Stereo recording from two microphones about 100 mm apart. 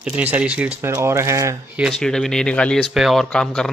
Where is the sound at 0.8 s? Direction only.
25° right (ahead or behind).